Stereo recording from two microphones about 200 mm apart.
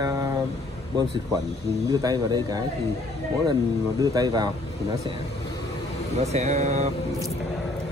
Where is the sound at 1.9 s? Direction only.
20° right (ahead or behind).